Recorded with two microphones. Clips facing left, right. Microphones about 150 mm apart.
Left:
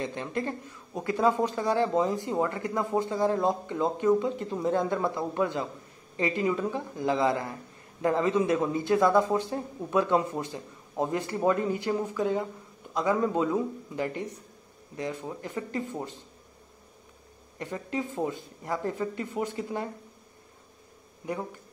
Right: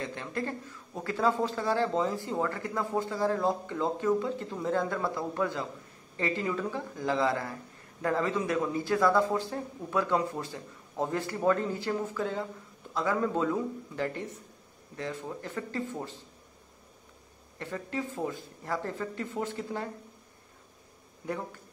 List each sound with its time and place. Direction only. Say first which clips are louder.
0.0 s a man's voice: left 3 dB; 20° left (ahead or behind)
17.6 s speech: left 2 dB; 15° left (ahead or behind)